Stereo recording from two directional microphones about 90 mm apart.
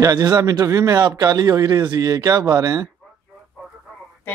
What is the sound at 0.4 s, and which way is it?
A man's voice, 40° right (ahead or behind).